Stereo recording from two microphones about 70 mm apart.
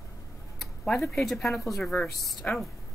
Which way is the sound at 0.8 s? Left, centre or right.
Centre.